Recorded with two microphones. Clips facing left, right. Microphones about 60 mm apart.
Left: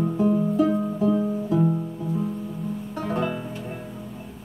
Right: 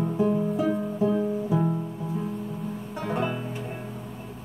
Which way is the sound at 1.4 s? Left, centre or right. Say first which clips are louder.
Left 6 dB; centre.